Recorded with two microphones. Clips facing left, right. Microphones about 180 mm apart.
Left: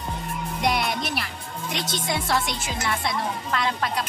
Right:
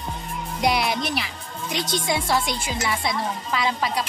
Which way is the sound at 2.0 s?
Centre (ahead or behind).